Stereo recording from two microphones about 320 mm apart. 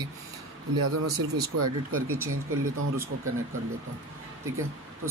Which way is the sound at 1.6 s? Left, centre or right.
Right.